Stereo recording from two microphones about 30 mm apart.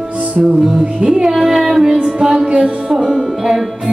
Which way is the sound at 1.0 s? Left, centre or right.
Right.